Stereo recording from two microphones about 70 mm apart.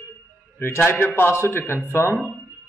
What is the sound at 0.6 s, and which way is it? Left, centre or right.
A man's voice, left.